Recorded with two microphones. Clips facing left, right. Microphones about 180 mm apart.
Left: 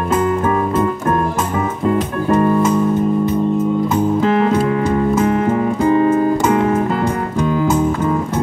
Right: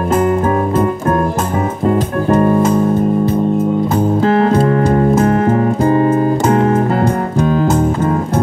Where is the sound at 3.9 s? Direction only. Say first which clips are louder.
Right 2 dB; 35° right (ahead or behind).